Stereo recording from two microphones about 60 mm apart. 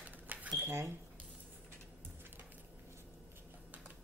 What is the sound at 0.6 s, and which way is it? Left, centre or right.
Speech, right.